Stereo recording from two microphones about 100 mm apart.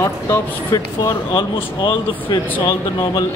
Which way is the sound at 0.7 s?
45° left (ahead or behind).